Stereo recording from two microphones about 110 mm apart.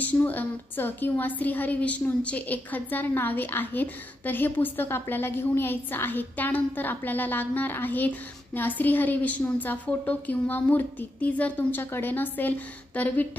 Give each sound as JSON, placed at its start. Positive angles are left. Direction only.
{"t": 0.0, "sound": "a woman's voice", "side_deg": 15}